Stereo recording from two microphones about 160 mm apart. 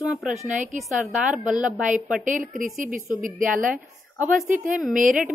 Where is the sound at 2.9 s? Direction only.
55° right (ahead or behind).